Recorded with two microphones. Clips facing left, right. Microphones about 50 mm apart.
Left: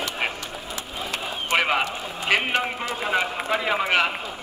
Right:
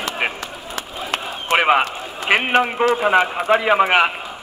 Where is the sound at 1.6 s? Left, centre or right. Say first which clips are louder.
Right 7 dB; right.